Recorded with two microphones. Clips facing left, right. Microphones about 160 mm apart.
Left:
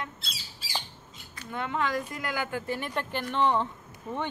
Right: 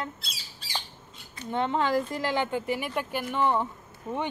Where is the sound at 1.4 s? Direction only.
30° right (ahead or behind); by 3.6 s 10° right (ahead or behind).